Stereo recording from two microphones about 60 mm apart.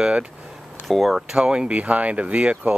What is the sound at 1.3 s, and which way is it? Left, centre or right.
Speech, centre.